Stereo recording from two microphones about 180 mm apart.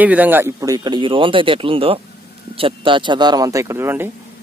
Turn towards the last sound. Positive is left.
turn(degrees=-15)  # may be behind; listen again after turning